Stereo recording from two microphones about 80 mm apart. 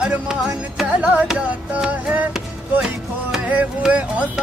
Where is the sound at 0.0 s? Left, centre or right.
Centre.